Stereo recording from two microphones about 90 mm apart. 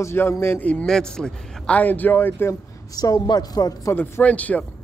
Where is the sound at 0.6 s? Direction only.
15° left (ahead or behind).